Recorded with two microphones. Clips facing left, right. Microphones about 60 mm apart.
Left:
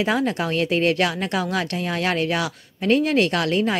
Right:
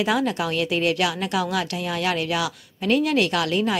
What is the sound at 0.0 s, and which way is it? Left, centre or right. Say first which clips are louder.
A woman's voice: left 1 dB; left.